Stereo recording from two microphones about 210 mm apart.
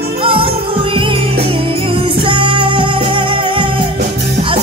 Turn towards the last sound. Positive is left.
turn(degrees=-25)  # may be behind; listen again after turning